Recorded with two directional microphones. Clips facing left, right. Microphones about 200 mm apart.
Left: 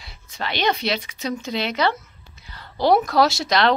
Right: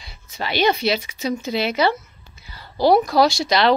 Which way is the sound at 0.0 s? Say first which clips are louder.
Right 1 dB; centre (ahead or behind).